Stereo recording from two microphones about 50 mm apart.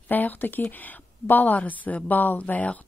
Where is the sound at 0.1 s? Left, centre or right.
Left.